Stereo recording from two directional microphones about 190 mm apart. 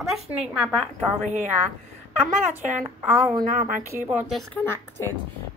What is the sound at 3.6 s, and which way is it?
Speech, 45° right (ahead or behind).